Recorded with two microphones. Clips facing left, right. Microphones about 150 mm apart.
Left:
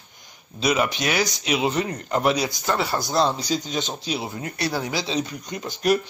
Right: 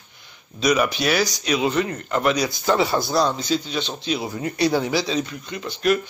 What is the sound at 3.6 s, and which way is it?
Speech, 45° left (ahead or behind).